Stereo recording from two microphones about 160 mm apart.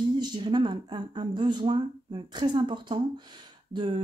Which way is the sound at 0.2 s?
25° right (ahead or behind).